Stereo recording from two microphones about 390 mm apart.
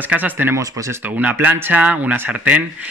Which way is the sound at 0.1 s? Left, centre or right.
Centre.